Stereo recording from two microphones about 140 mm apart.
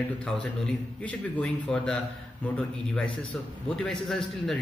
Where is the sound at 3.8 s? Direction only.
Centre (ahead or behind).